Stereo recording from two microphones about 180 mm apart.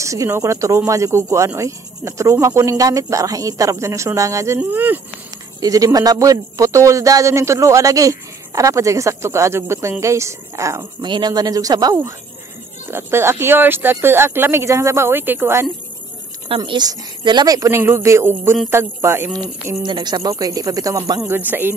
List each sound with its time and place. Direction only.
0.0 s a man's voice: 15° right (ahead or behind)
16.4 s a man's voice: 30° right (ahead or behind); by 21.7 s 10° right (ahead or behind)